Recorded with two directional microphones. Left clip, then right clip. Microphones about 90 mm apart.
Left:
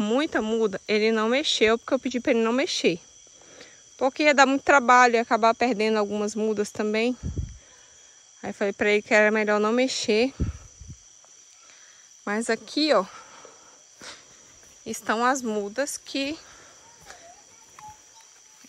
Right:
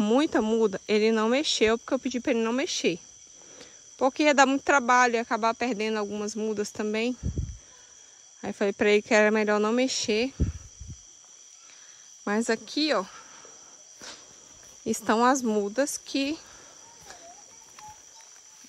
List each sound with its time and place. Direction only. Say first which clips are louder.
0.0 s speech: right 1 dB; 50° right (ahead or behind); by 3.0 s 25° right (ahead or behind)
3.5 s speech: left 1 dB; 45° right (ahead or behind)
8.4 s speech: even; 45° right (ahead or behind); by 10.3 s 25° right (ahead or behind)
12.3 s speech: left 1 dB; 50° right (ahead or behind)
12.5 s speech: left 4 dB; 30° right (ahead or behind)
15.0 s speech: right 1 dB; 90° right; by 16.4 s 60° right (ahead or behind)